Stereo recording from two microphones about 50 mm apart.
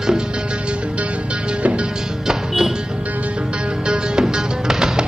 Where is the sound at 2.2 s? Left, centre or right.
Centre.